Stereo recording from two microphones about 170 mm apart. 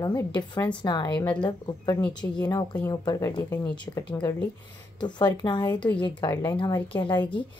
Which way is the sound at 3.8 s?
25° left (ahead or behind).